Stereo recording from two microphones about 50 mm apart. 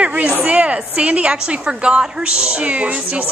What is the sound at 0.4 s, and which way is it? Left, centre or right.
A woman's voice, right.